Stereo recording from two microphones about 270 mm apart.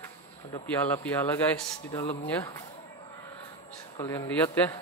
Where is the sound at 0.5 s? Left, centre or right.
Centre.